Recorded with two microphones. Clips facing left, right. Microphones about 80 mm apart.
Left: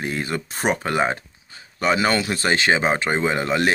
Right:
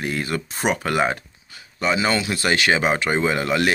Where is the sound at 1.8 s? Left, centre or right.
Left.